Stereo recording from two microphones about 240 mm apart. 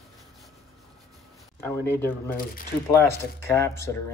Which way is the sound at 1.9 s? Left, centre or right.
Centre.